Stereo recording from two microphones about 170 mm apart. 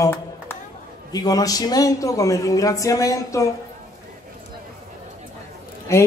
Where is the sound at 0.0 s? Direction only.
15° left (ahead or behind).